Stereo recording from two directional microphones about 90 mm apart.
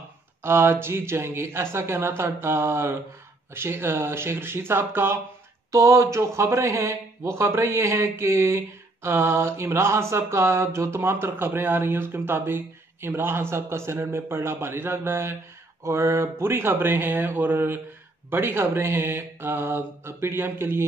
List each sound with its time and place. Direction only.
0.4 s speech: 25° right (ahead or behind)